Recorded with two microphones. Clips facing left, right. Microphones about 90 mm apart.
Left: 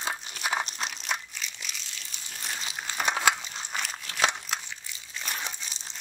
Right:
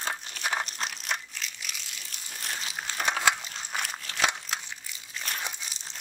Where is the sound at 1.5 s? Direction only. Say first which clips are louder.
Even; 5° right (ahead or behind).